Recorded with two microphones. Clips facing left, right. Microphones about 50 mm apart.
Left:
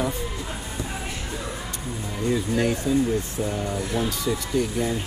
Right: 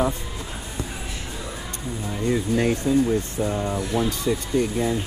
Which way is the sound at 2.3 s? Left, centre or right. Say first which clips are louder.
Right 1 dB; right.